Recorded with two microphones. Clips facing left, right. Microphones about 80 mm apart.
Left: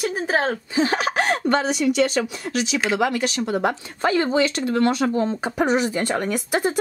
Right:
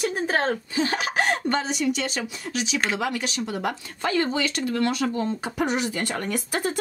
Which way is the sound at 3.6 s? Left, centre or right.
Left.